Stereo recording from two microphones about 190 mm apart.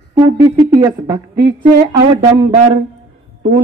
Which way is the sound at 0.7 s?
20° right (ahead or behind).